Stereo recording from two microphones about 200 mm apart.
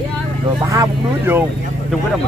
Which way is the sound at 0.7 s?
15° right (ahead or behind).